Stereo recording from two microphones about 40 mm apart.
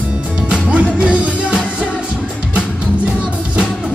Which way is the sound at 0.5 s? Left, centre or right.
Right.